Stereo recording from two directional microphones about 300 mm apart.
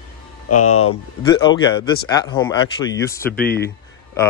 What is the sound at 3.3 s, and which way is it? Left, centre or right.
Speech, left.